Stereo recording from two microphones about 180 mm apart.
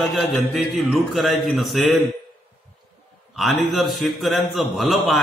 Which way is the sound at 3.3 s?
Centre (ahead or behind).